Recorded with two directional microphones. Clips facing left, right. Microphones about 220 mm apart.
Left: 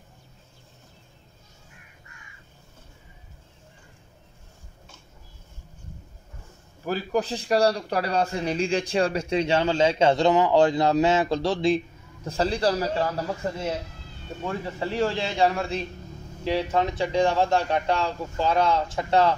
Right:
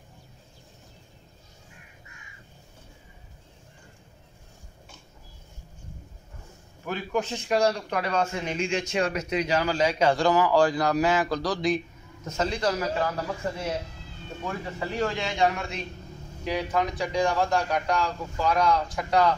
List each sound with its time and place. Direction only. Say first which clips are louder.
6.9 s a man's voice: left 3 dB; 35° left (ahead or behind)
14.4 s a man's voice: left 3 dB; 30° left (ahead or behind)